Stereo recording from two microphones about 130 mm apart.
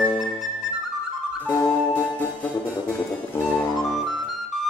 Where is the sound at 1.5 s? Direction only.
15° left (ahead or behind).